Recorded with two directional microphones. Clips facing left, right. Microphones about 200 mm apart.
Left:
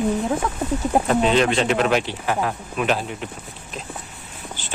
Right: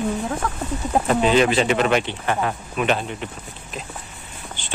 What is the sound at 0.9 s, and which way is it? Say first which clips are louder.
Speech: right 1 dB; centre (ahead or behind).